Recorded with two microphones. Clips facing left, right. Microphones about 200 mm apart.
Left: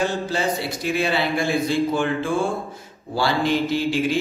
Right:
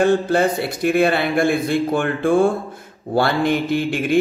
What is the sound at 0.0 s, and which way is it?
A man's voice, 55° right (ahead or behind).